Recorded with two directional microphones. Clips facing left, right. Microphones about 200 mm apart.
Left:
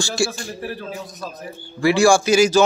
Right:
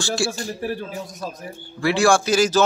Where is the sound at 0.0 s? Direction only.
5° right (ahead or behind).